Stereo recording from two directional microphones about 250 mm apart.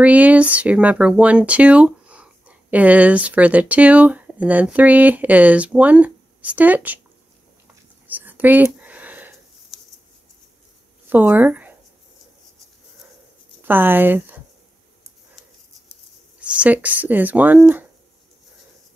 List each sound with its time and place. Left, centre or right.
0.0 s speech: centre
8.1 s a sound: centre
11.1 s speech: centre
13.6 s speech: centre
16.3 s speech: centre